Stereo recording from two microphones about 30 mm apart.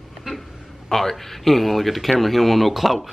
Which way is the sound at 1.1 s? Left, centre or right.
Centre.